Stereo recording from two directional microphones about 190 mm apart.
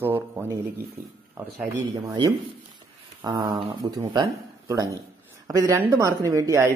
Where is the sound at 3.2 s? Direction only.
20° right (ahead or behind).